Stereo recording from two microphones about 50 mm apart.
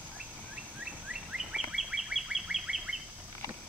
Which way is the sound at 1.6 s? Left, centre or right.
Centre.